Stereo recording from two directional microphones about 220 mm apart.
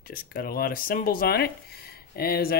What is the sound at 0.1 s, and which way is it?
Speech, 40° left (ahead or behind).